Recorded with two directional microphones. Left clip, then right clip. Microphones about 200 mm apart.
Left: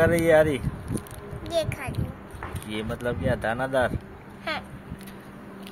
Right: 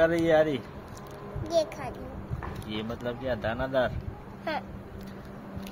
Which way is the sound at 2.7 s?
35° left (ahead or behind).